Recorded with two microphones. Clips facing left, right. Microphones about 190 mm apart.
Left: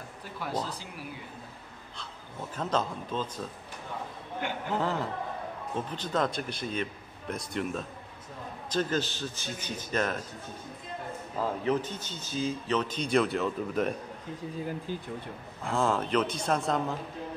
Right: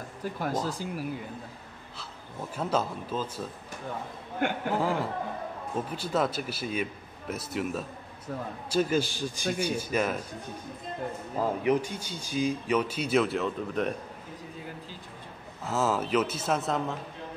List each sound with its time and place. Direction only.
0.2 s speech: 45° right (ahead or behind)
2.5 s speech: 10° right (ahead or behind)
4.6 s a man's voice: 10° right (ahead or behind)
11.3 s speech: 15° right (ahead or behind)
14.9 s speech: 50° left (ahead or behind)
15.6 s a man's voice: 5° right (ahead or behind)